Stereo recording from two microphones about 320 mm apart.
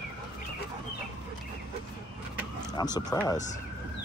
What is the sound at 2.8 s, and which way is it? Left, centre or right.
Speech, centre.